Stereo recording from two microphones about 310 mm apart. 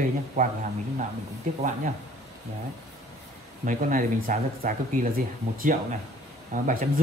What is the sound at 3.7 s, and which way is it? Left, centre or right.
Speech, right.